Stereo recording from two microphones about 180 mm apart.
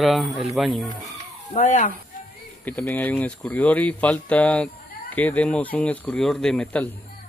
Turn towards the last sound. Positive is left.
turn(degrees=5)  # may be behind; listen again after turning